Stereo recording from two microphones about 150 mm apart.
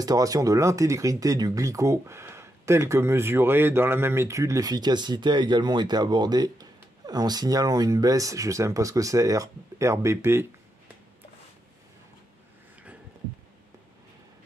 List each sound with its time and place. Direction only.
0.0 s speech: 25° right (ahead or behind)